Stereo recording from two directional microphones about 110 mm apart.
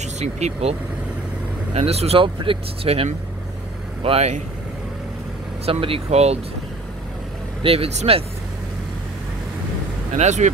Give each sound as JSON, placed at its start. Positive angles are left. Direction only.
{"t": 0.0, "sound": "speech", "side_deg": -85}
{"t": 4.0, "sound": "speech", "side_deg": -75}
{"t": 5.7, "sound": "speech", "side_deg": -55}
{"t": 7.6, "sound": "speech", "side_deg": -60}
{"t": 10.1, "sound": "speech", "side_deg": -90}